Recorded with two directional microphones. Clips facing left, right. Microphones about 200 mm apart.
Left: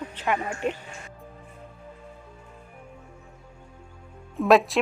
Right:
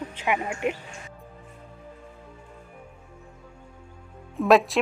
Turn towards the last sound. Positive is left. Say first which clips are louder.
# even
turn(degrees=0)  # may be behind; listen again after turning